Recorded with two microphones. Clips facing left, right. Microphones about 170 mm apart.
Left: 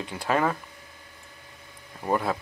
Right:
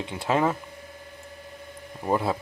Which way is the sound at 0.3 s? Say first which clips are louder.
Right 1 dB; 20° right (ahead or behind).